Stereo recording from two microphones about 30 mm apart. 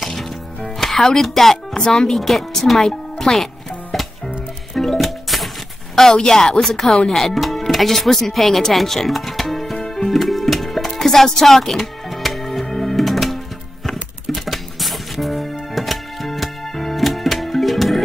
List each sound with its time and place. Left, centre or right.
0.0 s music: centre
0.7 s speech: centre
4.7 s music: centre
6.2 s speech: centre
6.6 s speech: centre
9.8 s music: centre